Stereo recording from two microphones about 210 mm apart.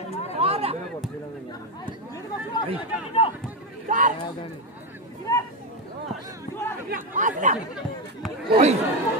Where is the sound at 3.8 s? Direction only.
35° right (ahead or behind).